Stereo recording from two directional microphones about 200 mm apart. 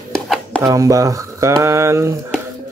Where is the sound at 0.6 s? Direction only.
15° right (ahead or behind).